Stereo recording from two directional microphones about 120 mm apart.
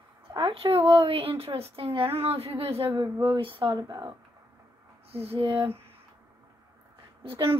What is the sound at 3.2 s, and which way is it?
Speech, 45° right (ahead or behind).